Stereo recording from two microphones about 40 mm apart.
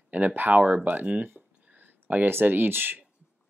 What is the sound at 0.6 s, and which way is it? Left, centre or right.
Speech, right.